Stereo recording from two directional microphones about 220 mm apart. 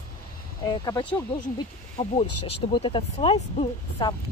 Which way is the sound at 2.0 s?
30° left (ahead or behind).